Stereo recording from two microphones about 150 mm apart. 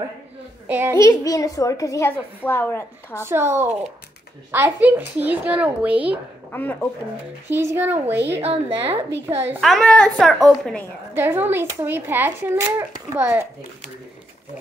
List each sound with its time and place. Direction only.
0.7 s a child's voice: 15° right (ahead or behind)
0.9 s a child's voice: 20° left (ahead or behind)
3.2 s speech: 15° right (ahead or behind)
6.5 s speech: 10° left (ahead or behind)
7.4 s speech: 15° right (ahead or behind)
8.4 s a woman's voice: 40° right (ahead or behind)
9.6 s a woman's voice: centre (ahead or behind)
11.1 s speech: 15° right (ahead or behind)